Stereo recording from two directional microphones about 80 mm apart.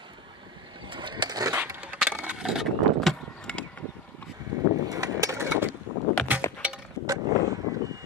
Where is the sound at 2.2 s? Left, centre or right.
Centre.